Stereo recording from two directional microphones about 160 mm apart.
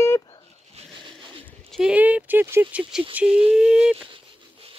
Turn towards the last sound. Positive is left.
turn(degrees=-5)  # may be behind; listen again after turning